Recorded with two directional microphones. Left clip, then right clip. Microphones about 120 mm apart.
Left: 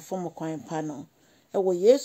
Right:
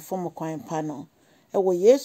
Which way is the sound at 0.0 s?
35° right (ahead or behind).